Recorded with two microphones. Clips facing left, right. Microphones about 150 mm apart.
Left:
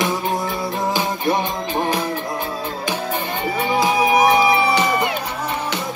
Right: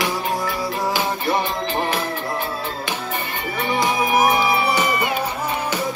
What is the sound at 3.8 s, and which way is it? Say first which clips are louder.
Music: left 2 dB; 5° right (ahead or behind).